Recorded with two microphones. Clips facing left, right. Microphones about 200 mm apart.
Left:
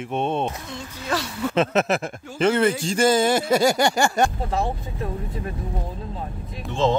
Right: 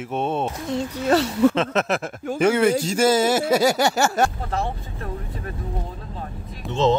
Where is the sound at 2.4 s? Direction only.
10° right (ahead or behind).